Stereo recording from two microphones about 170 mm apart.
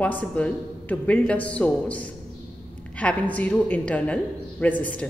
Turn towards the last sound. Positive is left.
turn(degrees=10)  # may be behind; listen again after turning